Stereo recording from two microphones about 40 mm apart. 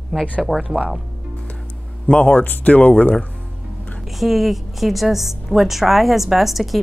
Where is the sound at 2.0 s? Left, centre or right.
Left.